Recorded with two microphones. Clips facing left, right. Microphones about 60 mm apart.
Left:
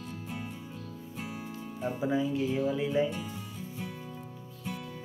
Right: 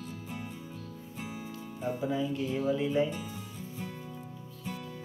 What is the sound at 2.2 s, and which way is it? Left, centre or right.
Speech, centre.